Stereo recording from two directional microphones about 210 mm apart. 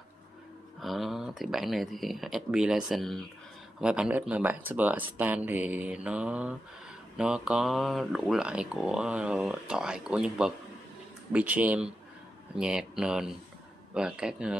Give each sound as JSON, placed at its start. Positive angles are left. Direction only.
{"t": 0.7, "sound": "speech", "side_deg": 0}